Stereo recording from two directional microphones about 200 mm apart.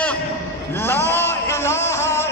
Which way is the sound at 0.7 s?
10° left (ahead or behind).